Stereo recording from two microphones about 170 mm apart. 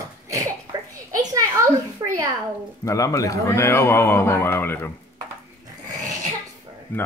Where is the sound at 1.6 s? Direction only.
20° right (ahead or behind).